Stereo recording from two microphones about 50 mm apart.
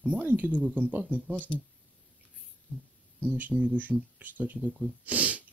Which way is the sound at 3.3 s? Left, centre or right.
Right.